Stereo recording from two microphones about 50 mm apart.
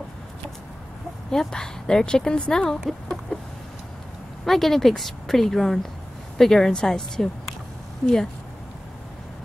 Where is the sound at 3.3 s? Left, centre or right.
Left.